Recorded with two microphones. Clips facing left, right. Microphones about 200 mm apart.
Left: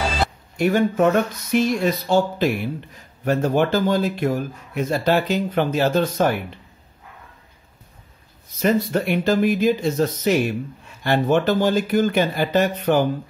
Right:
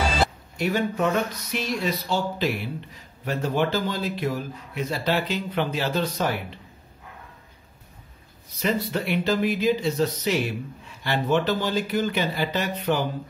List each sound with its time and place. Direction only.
0.6 s a man's voice: 50° left (ahead or behind)
8.5 s a man's voice: 50° left (ahead or behind)